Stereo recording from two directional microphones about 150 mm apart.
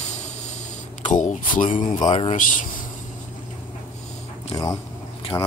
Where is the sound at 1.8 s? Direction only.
30° left (ahead or behind).